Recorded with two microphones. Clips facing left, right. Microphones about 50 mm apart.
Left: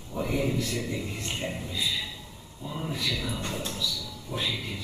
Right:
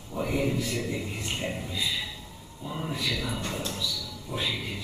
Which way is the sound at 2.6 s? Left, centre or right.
Centre.